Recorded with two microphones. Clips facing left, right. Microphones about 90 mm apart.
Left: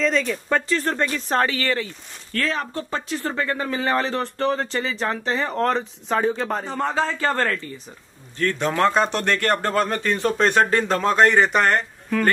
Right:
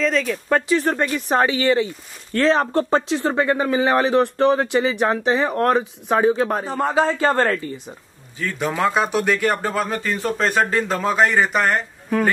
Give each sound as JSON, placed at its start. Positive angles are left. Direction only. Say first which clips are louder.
{"t": 0.0, "sound": "speech", "louder": "right 1 dB", "side_deg": 0}
{"t": 2.6, "sound": "speech", "louder": "right 9 dB", "side_deg": -40}
{"t": 3.1, "sound": "speech", "louder": "right 6 dB", "side_deg": -20}
{"t": 7.1, "sound": "speech", "louder": "right 4 dB", "side_deg": -20}
{"t": 8.4, "sound": "speech", "louder": "left 2 dB", "side_deg": -5}